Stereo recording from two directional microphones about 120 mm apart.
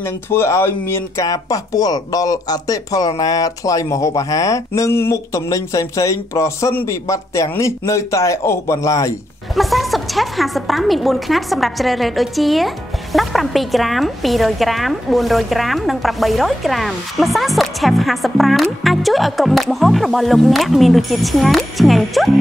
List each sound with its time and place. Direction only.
0.0 s speech: 20° left (ahead or behind)
9.6 s a woman's voice: centre (ahead or behind)